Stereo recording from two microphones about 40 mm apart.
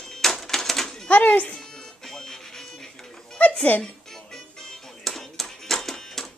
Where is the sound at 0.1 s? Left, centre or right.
Centre.